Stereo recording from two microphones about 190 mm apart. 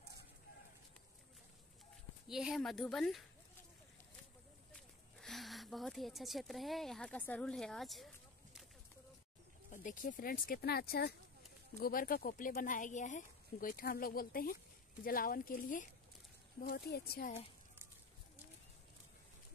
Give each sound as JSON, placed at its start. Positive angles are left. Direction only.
{"t": 2.2, "sound": "a woman's voice", "side_deg": 0}
{"t": 5.2, "sound": "a woman's voice", "side_deg": 0}
{"t": 9.7, "sound": "speech", "side_deg": 45}